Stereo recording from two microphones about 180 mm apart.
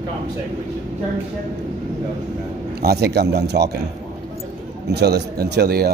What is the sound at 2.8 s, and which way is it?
Speech, 65° right (ahead or behind).